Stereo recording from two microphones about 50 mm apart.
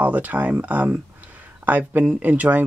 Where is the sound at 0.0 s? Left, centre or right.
Right.